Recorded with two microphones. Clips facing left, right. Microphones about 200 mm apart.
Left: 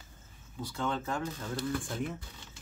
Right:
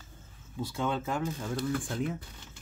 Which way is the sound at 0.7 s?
10° right (ahead or behind).